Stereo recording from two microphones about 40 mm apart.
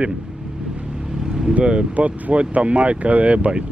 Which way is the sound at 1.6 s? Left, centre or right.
Right.